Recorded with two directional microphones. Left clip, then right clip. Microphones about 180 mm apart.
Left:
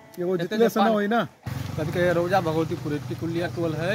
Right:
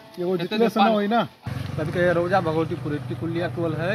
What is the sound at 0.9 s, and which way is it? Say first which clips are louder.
Speech: right 2 dB; 5° left (ahead or behind).